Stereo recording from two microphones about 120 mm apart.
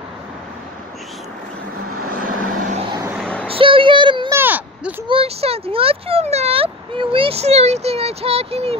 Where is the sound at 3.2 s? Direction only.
10° left (ahead or behind).